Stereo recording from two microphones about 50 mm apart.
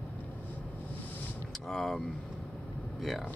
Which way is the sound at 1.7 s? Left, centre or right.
Centre.